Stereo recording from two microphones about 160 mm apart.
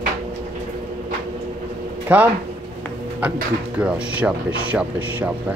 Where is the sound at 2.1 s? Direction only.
10° right (ahead or behind).